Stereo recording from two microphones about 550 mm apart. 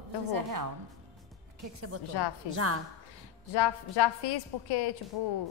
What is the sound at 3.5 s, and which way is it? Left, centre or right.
A woman's voice, left.